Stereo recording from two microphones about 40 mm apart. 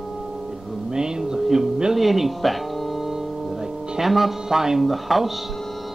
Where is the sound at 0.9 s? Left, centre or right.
Centre.